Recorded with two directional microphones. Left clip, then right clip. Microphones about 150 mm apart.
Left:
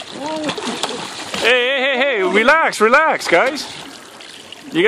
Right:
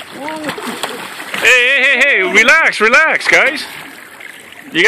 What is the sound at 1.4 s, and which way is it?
Speech, 15° left (ahead or behind).